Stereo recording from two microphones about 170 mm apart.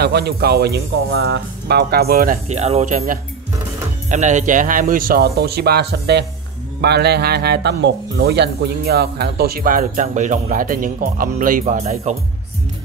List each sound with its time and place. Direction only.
0.0 s speech: 70° right (ahead or behind)
2.4 s speech: 40° right (ahead or behind)
11.6 s speech: 40° right (ahead or behind)